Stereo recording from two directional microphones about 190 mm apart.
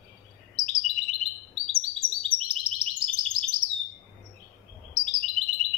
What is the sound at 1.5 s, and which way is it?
Chirp, 30° right (ahead or behind).